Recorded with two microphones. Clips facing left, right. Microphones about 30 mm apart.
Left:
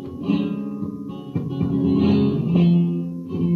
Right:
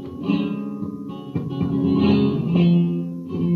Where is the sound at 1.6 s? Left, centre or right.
Right.